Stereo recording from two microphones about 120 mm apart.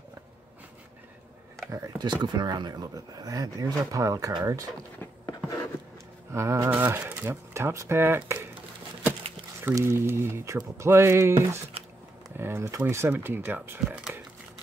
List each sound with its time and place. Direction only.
1.7 s speech: 25° right (ahead or behind)
6.3 s speech: 25° right (ahead or behind)
9.6 s speech: 20° right (ahead or behind)
13.8 s speech: 5° right (ahead or behind)